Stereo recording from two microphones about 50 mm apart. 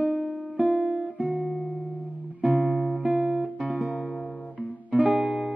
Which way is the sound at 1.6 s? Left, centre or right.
Left.